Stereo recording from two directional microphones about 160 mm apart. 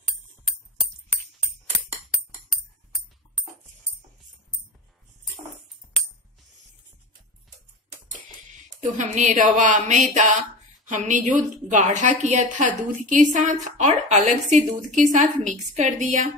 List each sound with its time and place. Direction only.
8.9 s a woman's voice: 50° right (ahead or behind)